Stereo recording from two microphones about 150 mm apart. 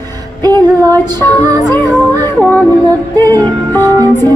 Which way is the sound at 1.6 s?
15° left (ahead or behind).